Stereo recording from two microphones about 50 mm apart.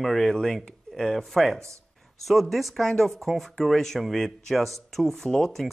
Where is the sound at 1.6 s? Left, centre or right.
Right.